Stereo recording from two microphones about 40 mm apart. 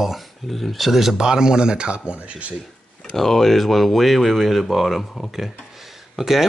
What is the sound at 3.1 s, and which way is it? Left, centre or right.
Speech, centre.